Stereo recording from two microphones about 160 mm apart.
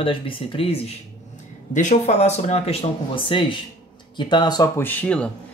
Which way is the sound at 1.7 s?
50° left (ahead or behind).